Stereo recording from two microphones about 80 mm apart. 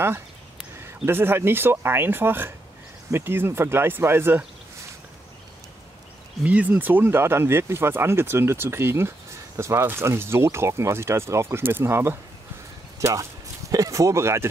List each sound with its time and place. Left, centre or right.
0.8 s speech: right
6.4 s speech: centre; by 14.5 s right